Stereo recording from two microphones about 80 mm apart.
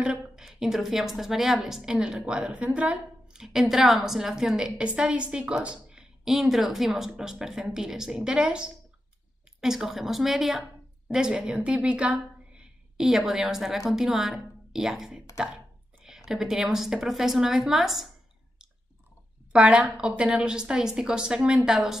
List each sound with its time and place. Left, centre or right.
0.0 s a sound: centre
0.5 s a woman's voice: centre
19.5 s a woman's voice: centre